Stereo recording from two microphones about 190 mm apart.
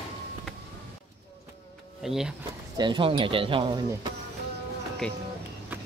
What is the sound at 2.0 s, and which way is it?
Speech, centre (ahead or behind).